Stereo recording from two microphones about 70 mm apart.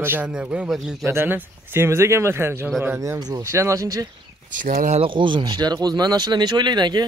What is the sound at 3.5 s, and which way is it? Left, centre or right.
Speech, right.